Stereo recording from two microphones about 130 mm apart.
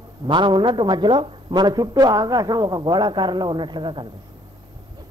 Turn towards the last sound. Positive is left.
turn(degrees=-35)  # may be behind; listen again after turning